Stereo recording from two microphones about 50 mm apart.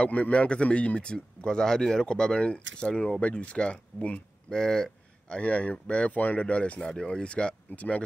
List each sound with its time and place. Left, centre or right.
0.0 s speech: left
4.5 s a sound: centre
5.4 s speech: left
7.7 s speech: left